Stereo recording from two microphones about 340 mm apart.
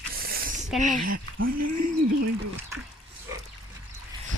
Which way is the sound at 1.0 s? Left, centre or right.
Right.